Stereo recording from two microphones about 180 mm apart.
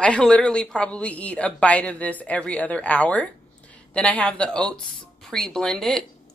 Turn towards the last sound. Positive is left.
turn(degrees=0)  # may be behind; listen again after turning